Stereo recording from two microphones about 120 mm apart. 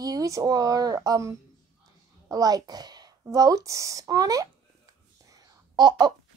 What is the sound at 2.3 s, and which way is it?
Speech, 35° right (ahead or behind).